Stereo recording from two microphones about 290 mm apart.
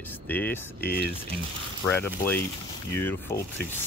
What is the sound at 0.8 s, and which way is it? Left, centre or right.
Speech, left.